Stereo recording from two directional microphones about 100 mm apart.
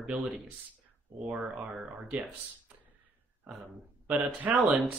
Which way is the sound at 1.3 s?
5° right (ahead or behind).